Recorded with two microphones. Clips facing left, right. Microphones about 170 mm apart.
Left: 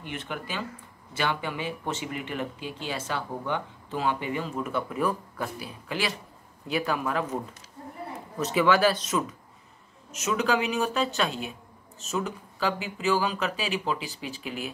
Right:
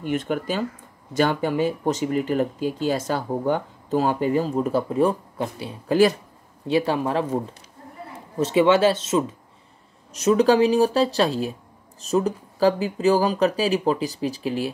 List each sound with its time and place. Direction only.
0.0 s speech: 45° right (ahead or behind); by 5.8 s 30° right (ahead or behind)
5.9 s speech: 45° right (ahead or behind)
6.7 s speech: 30° right (ahead or behind)